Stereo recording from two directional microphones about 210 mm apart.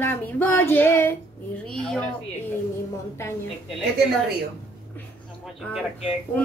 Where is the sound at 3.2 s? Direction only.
10° left (ahead or behind).